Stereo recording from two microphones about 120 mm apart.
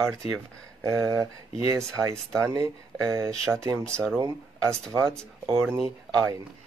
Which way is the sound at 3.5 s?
5° right (ahead or behind).